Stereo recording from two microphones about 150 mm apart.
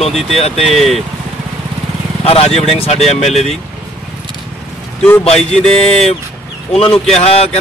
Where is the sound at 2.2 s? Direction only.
40° left (ahead or behind).